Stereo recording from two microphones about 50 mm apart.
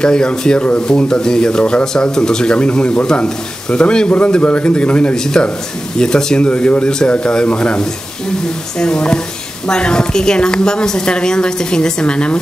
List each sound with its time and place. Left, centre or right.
0.0 s a woman's voice: centre
1.6 s a man's voice: left
2.0 s a woman's voice: centre